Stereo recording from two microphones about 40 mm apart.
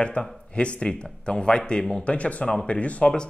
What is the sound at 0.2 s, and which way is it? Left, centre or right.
A man's voice, left.